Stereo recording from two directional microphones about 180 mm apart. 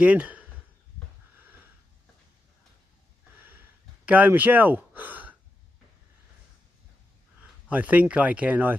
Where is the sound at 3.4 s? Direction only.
10° right (ahead or behind).